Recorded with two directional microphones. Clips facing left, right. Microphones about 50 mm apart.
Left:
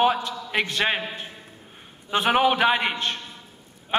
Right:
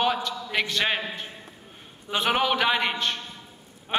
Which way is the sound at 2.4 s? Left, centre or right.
Centre.